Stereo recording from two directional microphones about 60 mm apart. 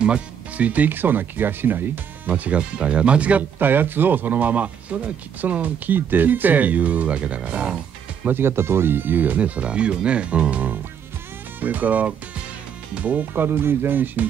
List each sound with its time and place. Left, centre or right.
0.0 s speech: right
3.5 s speech: right
8.3 s speech: right